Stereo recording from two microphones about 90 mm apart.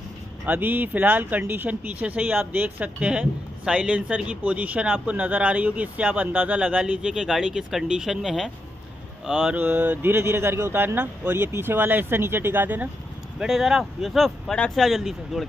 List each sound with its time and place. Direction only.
0.5 s speech: 20° right (ahead or behind)
9.6 s speech: 20° right (ahead or behind)
13.4 s speech: 5° right (ahead or behind)